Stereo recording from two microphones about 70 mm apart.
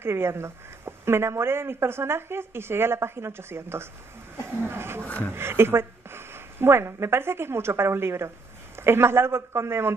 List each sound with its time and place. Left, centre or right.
0.0 s speech: right
4.6 s a sound: right
5.3 s speech: right